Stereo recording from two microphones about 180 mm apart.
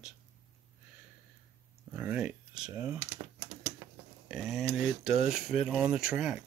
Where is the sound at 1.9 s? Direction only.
10° right (ahead or behind).